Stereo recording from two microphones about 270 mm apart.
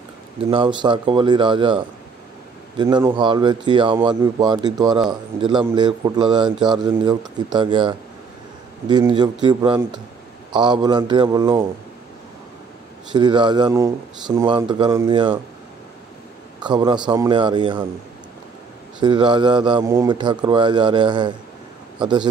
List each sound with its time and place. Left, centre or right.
0.5 s speech: centre
13.1 s speech: centre
16.6 s speech: centre
18.9 s speech: centre